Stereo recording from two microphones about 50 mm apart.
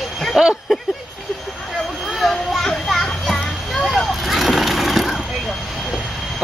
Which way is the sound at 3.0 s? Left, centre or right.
Centre.